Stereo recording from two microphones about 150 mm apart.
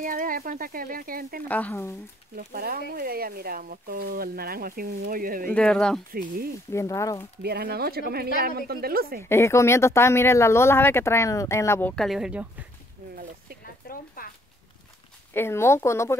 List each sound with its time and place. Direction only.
0.0 s speech: 65° right (ahead or behind)
1.5 s speech: 10° left (ahead or behind)
2.3 s speech: 75° right (ahead or behind)
5.5 s speech: 5° left (ahead or behind)
6.1 s speech: 75° right (ahead or behind)
6.7 s speech: 20° left (ahead or behind)
7.4 s speech: 90° right
9.2 s speech: 15° left (ahead or behind)
11.9 s speech: centre (ahead or behind)
13.1 s a sound: 75° right (ahead or behind)
13.8 s a sound: 75° left (ahead or behind)
15.3 s speech: 15° left (ahead or behind)